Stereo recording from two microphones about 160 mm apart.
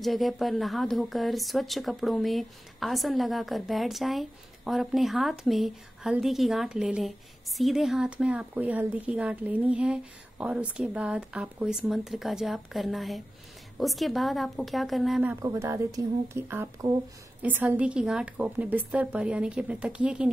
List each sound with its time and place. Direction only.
0.0 s speech: centre (ahead or behind)
15.4 s a woman's voice: 20° right (ahead or behind)